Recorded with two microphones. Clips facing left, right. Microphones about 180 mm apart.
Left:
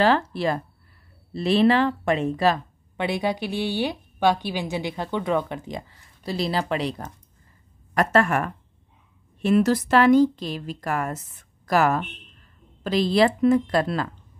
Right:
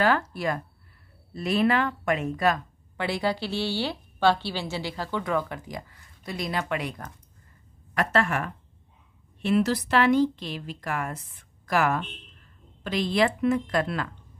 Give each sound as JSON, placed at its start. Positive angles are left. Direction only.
{"t": 0.0, "sound": "speech", "side_deg": 30}
{"t": 7.9, "sound": "a woman's voice", "side_deg": 45}